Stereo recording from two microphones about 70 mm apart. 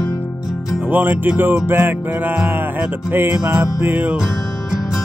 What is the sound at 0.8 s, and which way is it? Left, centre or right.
Music, right.